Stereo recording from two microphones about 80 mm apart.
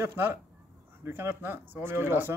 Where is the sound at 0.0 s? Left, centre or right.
Right.